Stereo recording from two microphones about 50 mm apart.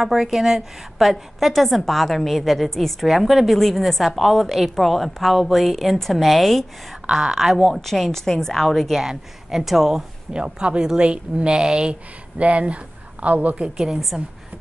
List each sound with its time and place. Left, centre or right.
0.0 s a woman's voice: centre
7.1 s a woman's voice: centre
9.0 s speech: centre
10.3 s speech: centre
13.6 s speech: centre